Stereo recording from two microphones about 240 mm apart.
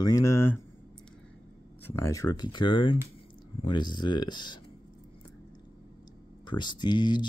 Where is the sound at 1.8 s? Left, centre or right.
Centre.